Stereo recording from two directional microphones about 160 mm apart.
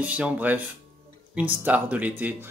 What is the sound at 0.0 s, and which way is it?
Speech, 10° right (ahead or behind).